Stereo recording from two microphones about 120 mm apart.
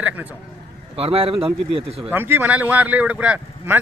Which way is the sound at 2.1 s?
15° right (ahead or behind).